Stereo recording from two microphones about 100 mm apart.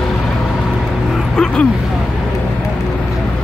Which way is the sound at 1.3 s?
10° left (ahead or behind).